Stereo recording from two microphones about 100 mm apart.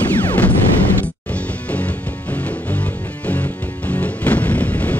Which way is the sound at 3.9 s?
15° left (ahead or behind).